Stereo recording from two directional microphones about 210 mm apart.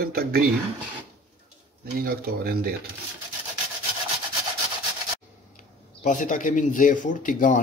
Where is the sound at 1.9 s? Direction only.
45° right (ahead or behind).